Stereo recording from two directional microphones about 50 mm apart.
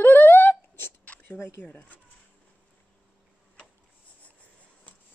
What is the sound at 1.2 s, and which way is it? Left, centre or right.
Speech, left.